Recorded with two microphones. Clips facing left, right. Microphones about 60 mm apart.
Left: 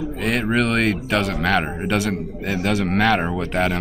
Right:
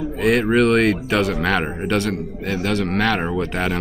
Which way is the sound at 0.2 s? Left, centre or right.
Centre.